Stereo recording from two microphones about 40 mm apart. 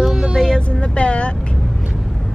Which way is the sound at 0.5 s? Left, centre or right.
Left.